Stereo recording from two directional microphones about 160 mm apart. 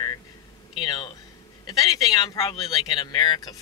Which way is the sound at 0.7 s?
30° left (ahead or behind).